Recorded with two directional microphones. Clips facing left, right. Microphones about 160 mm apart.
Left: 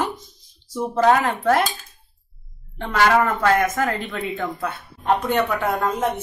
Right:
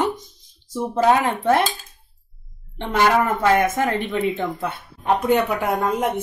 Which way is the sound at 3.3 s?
20° right (ahead or behind).